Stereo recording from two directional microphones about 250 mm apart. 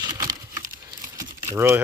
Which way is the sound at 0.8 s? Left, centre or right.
Centre.